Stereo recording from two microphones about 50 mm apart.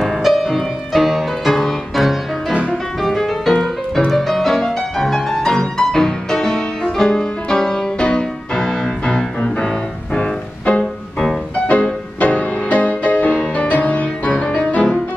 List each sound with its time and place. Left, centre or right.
0.0 s music: centre; by 14.6 s left